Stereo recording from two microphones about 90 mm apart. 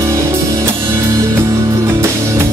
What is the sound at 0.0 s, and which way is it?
Music, 35° right (ahead or behind).